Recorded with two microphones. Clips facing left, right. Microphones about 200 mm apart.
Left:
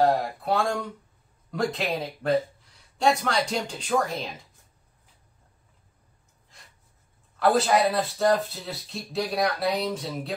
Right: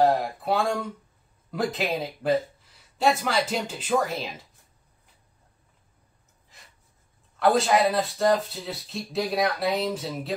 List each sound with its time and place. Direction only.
0.0 s speech: centre (ahead or behind)
7.3 s speech: centre (ahead or behind)